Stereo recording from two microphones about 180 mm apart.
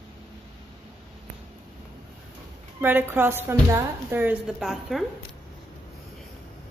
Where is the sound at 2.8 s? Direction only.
10° right (ahead or behind).